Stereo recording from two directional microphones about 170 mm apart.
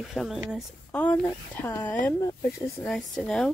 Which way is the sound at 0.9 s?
10° left (ahead or behind).